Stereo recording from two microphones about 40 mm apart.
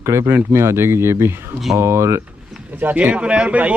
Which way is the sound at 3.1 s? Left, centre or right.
Right.